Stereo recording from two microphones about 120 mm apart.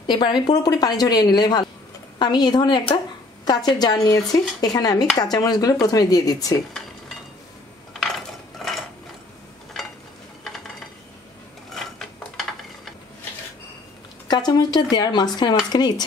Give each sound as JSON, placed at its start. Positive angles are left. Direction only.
{"t": 0.0, "sound": "speech", "side_deg": 40}
{"t": 8.6, "sound": "mechanisms", "side_deg": 0}
{"t": 11.7, "sound": "mechanisms", "side_deg": 0}
{"t": 14.2, "sound": "speech", "side_deg": 35}